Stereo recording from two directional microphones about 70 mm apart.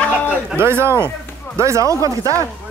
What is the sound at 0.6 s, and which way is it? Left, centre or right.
Speech, right.